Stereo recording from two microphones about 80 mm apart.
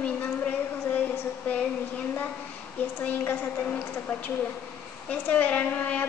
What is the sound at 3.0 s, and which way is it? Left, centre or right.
A woman's voice, left.